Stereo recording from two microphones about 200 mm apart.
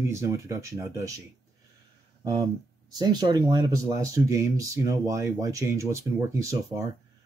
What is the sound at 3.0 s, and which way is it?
Speech, 20° right (ahead or behind).